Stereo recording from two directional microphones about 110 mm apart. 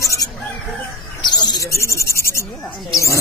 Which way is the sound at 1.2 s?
40° left (ahead or behind).